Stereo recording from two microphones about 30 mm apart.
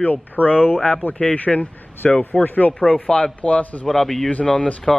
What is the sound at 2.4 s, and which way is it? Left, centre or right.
Speech, left.